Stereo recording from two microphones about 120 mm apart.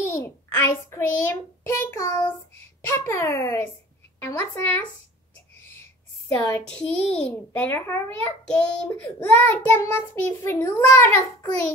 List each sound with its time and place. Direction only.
0.2 s a child's voice: 20° left (ahead or behind)
6.2 s a woman's voice: 20° left (ahead or behind)
6.7 s a child's voice: 10° left (ahead or behind)